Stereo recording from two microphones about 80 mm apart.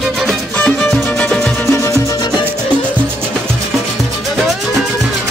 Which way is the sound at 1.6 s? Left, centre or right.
Left.